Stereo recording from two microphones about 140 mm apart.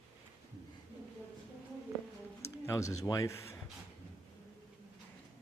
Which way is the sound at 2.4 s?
20° left (ahead or behind).